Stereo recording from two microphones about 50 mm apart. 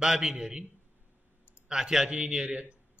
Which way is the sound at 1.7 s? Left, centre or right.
Centre.